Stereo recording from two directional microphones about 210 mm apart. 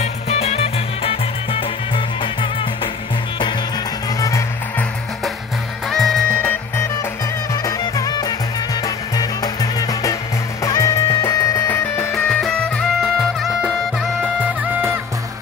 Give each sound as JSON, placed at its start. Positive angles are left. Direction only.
{"t": 0.0, "sound": "music", "side_deg": 30}
{"t": 4.2, "sound": "music", "side_deg": 15}
{"t": 5.9, "sound": "music", "side_deg": 0}